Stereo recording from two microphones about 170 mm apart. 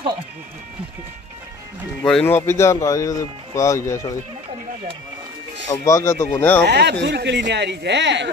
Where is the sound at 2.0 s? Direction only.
10° left (ahead or behind).